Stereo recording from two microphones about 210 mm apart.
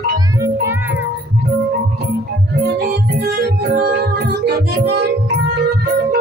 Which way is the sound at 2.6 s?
50° right (ahead or behind).